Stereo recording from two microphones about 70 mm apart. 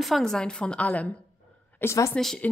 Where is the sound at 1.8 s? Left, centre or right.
Left.